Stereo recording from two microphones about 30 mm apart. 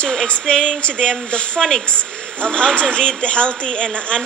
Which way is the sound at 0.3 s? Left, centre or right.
Left.